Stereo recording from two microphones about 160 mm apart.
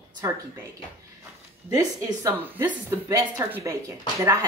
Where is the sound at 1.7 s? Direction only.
25° right (ahead or behind).